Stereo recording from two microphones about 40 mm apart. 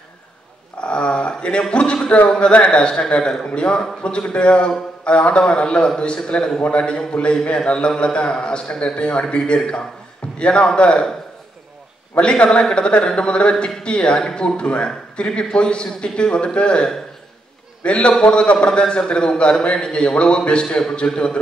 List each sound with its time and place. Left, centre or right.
0.7 s a man's voice: left
12.2 s a man's voice: left
17.8 s a man's voice: left